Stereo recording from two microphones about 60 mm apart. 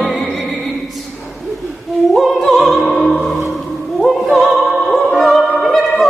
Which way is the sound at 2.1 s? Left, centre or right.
Centre.